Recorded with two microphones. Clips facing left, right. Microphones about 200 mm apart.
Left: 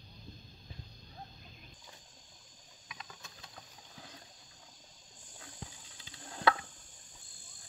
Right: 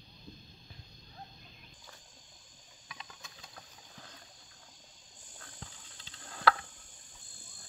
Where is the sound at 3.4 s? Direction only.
5° left (ahead or behind).